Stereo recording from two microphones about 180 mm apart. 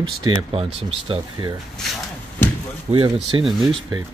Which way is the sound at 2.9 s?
30° right (ahead or behind).